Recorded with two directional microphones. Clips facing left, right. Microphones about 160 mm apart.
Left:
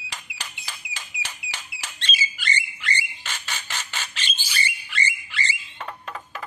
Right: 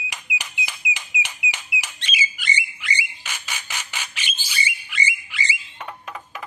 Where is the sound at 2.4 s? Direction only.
10° right (ahead or behind).